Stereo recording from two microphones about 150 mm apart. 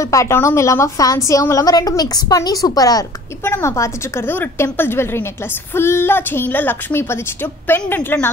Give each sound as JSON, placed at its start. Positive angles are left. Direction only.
{"t": 0.0, "sound": "a woman's voice", "side_deg": 20}